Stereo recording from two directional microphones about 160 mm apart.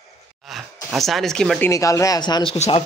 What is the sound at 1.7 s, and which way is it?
Speech, 20° left (ahead or behind).